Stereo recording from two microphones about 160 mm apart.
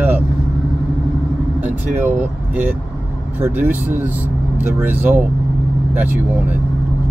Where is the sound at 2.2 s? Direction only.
10° right (ahead or behind).